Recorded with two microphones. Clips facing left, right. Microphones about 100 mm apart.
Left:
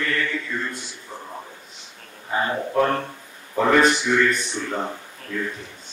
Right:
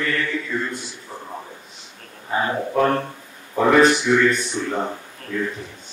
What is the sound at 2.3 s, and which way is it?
Speech, 5° right (ahead or behind).